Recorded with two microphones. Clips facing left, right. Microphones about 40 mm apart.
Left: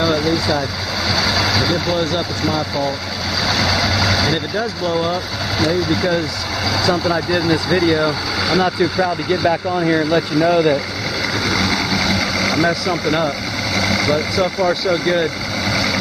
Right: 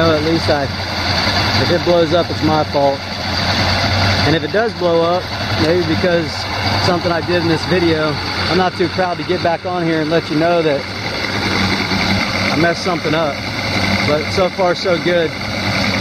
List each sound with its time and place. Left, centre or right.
0.0 s vehicle: centre
1.1 s speech: centre
11.4 s vehicle: centre
13.7 s speech: centre
15.7 s vehicle: centre